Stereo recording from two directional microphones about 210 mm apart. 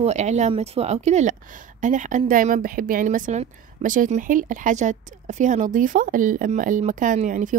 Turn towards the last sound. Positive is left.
turn(degrees=-40)  # may be behind; listen again after turning